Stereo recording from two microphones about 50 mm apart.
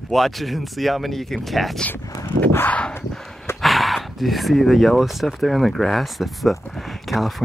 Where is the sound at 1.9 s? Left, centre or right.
Left.